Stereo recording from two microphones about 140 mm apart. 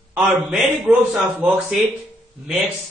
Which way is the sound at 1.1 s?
10° right (ahead or behind).